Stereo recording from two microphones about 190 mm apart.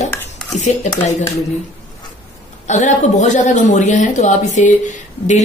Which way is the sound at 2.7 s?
40° left (ahead or behind).